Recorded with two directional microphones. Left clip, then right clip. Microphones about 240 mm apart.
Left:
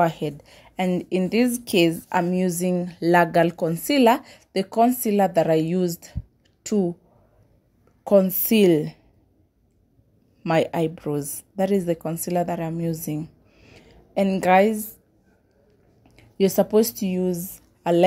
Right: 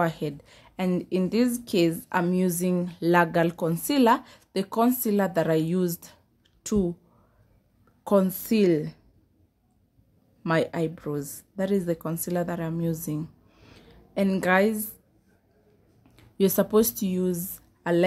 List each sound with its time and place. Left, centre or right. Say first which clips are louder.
0.0 s a woman's voice: left 5 dB; centre
8.0 s a woman's voice: left 5 dB; centre
10.4 s a woman's voice: left 4 dB; centre
12.9 s a sound: left 3 dB; centre
16.0 s speech: left 3 dB; centre